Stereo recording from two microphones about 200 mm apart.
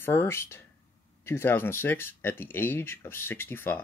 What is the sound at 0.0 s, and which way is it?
Speech, 10° left (ahead or behind).